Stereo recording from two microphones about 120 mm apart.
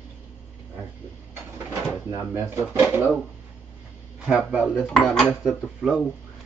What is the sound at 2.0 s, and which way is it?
Speech, 20° right (ahead or behind).